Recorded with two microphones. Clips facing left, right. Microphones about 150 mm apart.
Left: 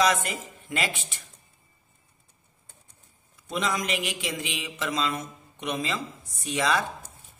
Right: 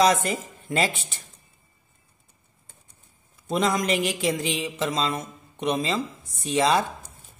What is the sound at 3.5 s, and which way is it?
Mantra, 40° right (ahead or behind).